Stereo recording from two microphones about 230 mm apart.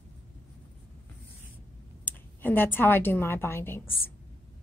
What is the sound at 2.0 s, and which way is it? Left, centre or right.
A woman's voice, centre.